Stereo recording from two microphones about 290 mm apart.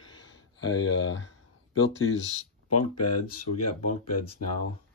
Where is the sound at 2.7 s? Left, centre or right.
Left.